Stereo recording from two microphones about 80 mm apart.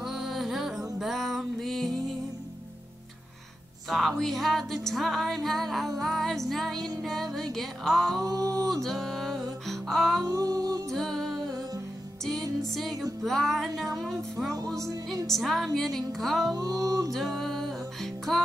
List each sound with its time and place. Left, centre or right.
0.0 s music: centre
4.2 s music: centre
8.2 s music: right
8.8 s music: centre
10.2 s music: right
10.9 s music: centre
12.7 s music: centre
16.4 s music: right
17.1 s music: centre